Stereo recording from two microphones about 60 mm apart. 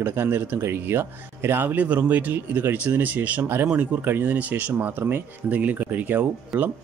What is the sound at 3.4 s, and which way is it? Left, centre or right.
Speech, right.